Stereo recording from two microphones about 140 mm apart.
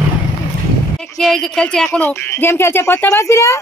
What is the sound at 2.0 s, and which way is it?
A woman's voice, 15° left (ahead or behind).